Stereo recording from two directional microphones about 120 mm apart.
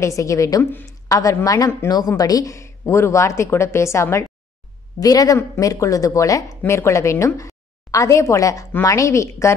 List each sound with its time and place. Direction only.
0.0 s a woman's voice: 25° left (ahead or behind)